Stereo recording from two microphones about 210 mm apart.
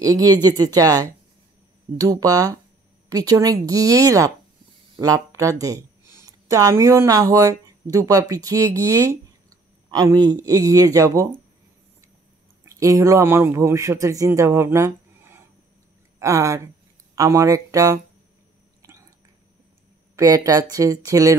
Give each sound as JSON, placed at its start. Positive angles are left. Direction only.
{"t": 0.0, "sound": "speech", "side_deg": -15}
{"t": 12.6, "sound": "speech", "side_deg": -15}
{"t": 18.8, "sound": "a sound", "side_deg": -15}
{"t": 20.2, "sound": "speech", "side_deg": -15}